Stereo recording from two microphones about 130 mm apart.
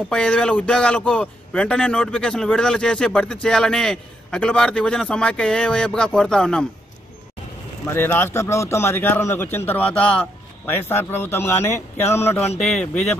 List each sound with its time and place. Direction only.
0.1 s a man's voice: 5° left (ahead or behind)
7.9 s a man's voice: 15° left (ahead or behind)
12.5 s a man's voice: 5° left (ahead or behind)